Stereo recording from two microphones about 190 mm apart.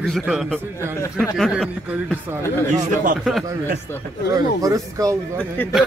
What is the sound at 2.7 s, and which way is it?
Speech, 45° right (ahead or behind).